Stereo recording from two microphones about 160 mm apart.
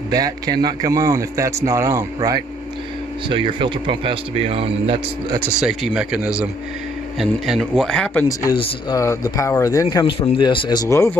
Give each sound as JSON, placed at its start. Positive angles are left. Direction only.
{"t": 0.1, "sound": "a man's voice", "side_deg": -25}
{"t": 5.5, "sound": "speech", "side_deg": -5}
{"t": 8.9, "sound": "speech", "side_deg": 20}
{"t": 10.3, "sound": "speech", "side_deg": 30}